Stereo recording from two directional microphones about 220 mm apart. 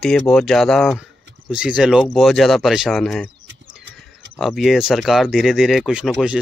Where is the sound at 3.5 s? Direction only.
55° right (ahead or behind).